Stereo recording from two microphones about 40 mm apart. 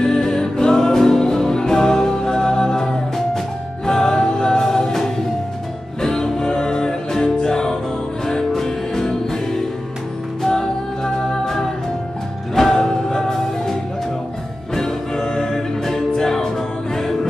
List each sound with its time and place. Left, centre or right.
0.0 s music: centre